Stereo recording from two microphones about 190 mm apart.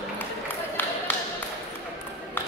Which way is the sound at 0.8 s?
10° left (ahead or behind).